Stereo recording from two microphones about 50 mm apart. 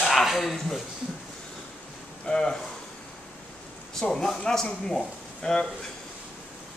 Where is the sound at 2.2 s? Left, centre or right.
Centre.